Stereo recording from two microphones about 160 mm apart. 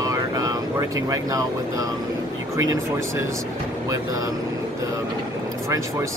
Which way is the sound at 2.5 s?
20° right (ahead or behind).